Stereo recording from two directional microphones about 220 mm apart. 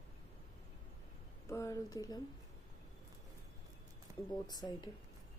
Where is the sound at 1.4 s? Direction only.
15° left (ahead or behind).